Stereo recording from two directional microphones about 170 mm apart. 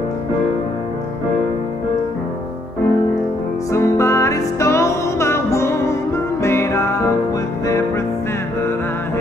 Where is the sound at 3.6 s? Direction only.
15° left (ahead or behind).